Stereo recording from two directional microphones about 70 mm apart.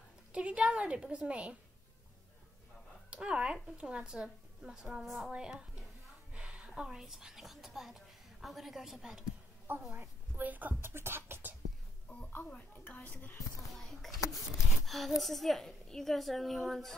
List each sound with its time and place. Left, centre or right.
0.3 s a woman's voice: centre
3.1 s a woman's voice: centre
5.3 s a woman's voice: centre
9.7 s a woman's voice: right
10.9 s music: right
12.3 s a child's voice: left
13.7 s a woman's voice: centre